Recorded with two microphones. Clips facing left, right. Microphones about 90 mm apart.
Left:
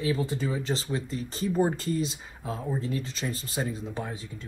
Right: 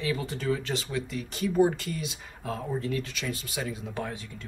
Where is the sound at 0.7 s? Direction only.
30° left (ahead or behind).